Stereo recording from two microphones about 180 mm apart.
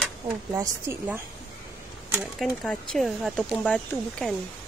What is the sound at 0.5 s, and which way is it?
Speech, 15° right (ahead or behind).